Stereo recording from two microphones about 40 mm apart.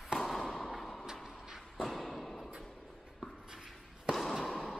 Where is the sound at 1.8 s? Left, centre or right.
Centre.